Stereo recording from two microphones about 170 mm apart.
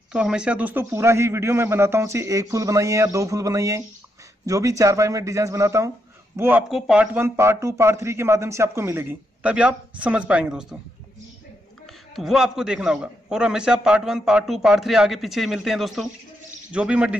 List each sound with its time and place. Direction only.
0.1 s speech: 5° right (ahead or behind)
11.8 s a man's voice: centre (ahead or behind)